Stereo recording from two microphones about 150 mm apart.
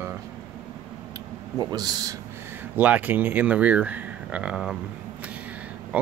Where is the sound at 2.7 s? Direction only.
10° right (ahead or behind).